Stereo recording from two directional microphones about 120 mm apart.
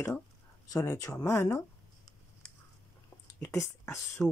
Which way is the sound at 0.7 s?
25° left (ahead or behind).